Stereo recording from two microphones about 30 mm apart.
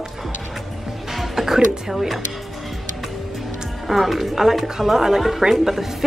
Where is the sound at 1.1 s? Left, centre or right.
Centre.